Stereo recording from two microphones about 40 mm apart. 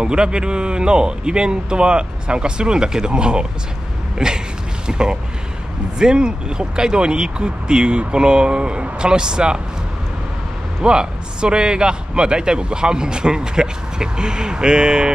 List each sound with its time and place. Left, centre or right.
0.0 s a man's voice: right
4.2 s a sound: centre
4.8 s a man's voice: right
10.8 s a man's voice: right